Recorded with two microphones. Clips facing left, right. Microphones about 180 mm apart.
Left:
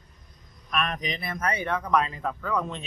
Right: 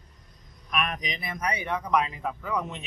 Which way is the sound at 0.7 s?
10° right (ahead or behind).